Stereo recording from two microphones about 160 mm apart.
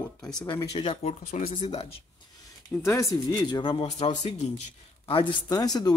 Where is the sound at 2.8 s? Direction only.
20° left (ahead or behind); by 4.0 s 40° left (ahead or behind).